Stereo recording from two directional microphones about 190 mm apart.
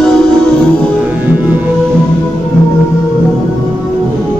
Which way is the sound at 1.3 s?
10° right (ahead or behind).